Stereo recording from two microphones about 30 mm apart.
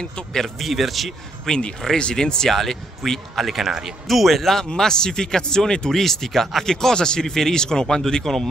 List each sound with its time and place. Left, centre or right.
0.6 s speech: centre
1.5 s speech: centre
2.0 s speech: left
2.5 s speech: centre
4.1 s speech: centre
4.6 s speech: left
5.9 s speech: centre
6.6 s speech: centre
8.3 s speech: centre